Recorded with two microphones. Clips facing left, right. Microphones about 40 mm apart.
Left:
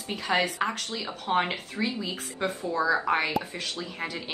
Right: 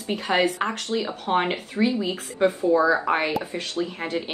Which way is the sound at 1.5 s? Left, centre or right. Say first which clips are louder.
Right 7 dB; centre.